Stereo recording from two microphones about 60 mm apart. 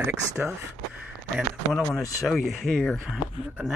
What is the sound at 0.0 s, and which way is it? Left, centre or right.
Speech, right.